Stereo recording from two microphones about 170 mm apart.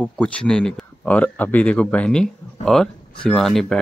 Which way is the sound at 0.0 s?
5° left (ahead or behind).